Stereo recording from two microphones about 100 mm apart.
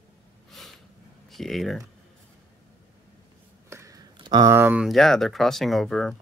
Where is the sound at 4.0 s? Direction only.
45° right (ahead or behind).